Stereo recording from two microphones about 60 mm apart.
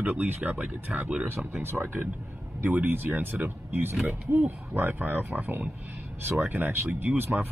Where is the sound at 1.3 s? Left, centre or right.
Right.